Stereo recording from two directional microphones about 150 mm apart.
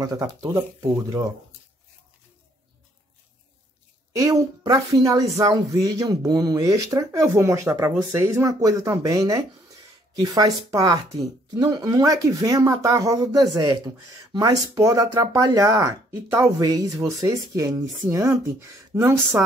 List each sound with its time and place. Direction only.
0.2 s speech: 20° right (ahead or behind)
4.1 s speech: 20° right (ahead or behind)